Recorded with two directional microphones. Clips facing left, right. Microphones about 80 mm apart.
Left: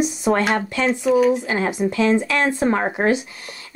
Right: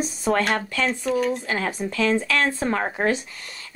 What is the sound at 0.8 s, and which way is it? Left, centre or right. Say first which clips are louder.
Speech: left 8 dB; centre.